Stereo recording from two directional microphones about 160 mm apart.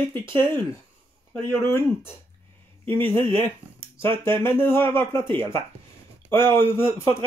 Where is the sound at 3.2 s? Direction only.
15° left (ahead or behind).